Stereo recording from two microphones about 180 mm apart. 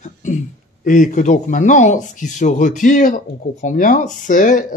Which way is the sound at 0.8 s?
45° left (ahead or behind).